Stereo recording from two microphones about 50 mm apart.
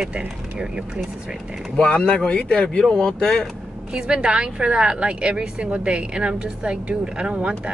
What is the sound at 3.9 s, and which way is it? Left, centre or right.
A woman's voice, centre.